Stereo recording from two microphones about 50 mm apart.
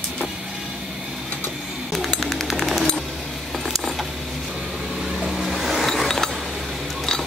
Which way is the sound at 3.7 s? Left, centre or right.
Centre.